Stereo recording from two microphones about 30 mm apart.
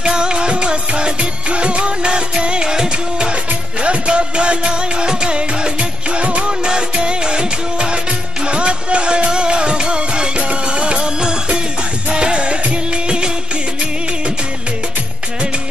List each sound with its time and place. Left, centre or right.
0.0 s music: right
3.8 s music: right
12.9 s music of bollywood: right